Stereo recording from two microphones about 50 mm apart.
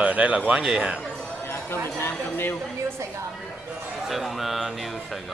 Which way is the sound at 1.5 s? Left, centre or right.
Left.